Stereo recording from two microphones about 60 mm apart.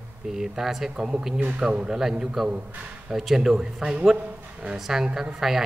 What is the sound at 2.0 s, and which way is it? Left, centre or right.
A man's voice, centre.